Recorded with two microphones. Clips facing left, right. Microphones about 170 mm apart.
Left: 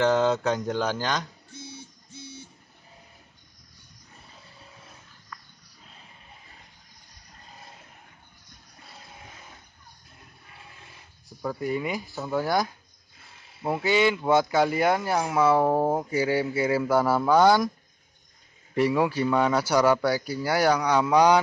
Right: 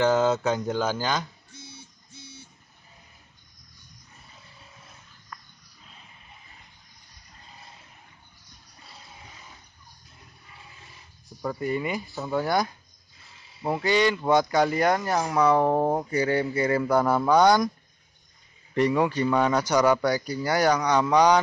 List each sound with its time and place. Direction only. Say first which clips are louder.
0.0 s speech: even; centre (ahead or behind)
10.7 s a sound: left 1 dB; 55° left (ahead or behind)
11.2 s speech: even; centre (ahead or behind)
18.8 s speech: even; 5° left (ahead or behind)